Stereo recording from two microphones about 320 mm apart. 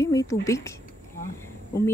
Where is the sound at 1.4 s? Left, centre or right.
Centre.